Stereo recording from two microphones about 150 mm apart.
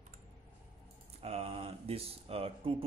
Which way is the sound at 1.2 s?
40° right (ahead or behind).